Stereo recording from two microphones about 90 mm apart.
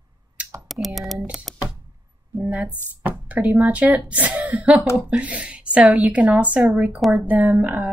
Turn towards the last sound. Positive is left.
turn(degrees=-20)  # may be behind; listen again after turning